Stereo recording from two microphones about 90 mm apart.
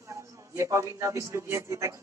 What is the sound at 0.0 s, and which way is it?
A man's voice, 35° right (ahead or behind).